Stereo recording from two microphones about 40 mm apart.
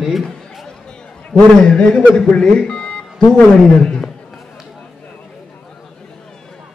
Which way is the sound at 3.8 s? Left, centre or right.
Centre.